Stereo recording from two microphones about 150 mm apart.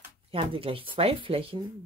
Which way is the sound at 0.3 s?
40° right (ahead or behind).